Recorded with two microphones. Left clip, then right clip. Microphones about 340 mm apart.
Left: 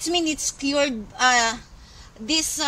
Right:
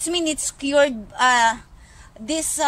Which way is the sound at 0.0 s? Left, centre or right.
Right.